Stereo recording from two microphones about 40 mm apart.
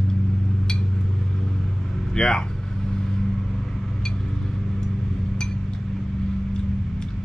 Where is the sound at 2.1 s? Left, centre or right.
Centre.